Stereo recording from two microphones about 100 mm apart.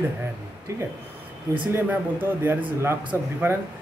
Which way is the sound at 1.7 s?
20° right (ahead or behind).